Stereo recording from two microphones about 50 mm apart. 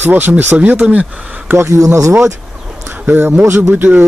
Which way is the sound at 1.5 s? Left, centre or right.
Right.